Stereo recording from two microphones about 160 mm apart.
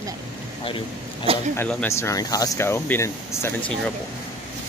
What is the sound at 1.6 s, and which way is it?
Speech, 10° left (ahead or behind).